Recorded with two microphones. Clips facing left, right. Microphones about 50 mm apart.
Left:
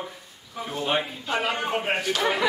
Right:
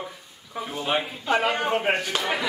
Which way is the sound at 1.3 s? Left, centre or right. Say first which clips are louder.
Right 4 dB; right.